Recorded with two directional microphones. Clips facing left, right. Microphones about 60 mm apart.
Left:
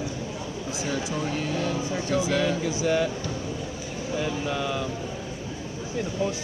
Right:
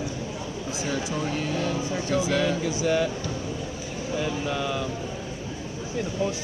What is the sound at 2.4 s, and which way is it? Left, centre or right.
Speech, centre.